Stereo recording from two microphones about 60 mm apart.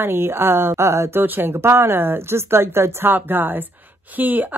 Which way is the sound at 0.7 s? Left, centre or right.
Right.